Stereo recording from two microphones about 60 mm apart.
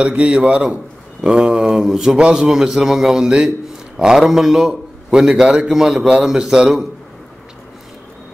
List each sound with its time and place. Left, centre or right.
0.1 s a man's voice: right